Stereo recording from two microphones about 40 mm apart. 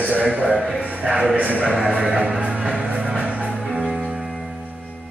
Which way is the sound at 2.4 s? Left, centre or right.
Right.